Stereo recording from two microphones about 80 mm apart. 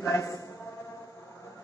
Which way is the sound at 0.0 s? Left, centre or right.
Left.